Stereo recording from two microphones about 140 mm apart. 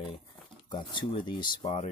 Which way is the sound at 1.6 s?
55° left (ahead or behind).